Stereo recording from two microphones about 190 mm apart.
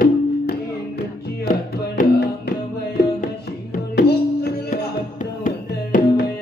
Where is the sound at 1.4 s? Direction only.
50° left (ahead or behind).